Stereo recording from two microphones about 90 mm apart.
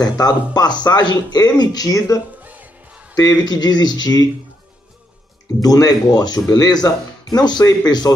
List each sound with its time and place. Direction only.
0.0 s speech: 45° left (ahead or behind)
2.4 s music: 15° right (ahead or behind)
3.2 s speech: 45° left (ahead or behind)
5.6 s speech: 45° left (ahead or behind)